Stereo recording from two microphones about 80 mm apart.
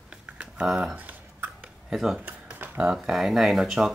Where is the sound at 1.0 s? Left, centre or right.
Right.